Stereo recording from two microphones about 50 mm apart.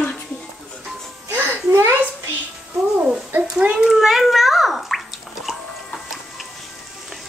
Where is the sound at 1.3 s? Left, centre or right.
Right.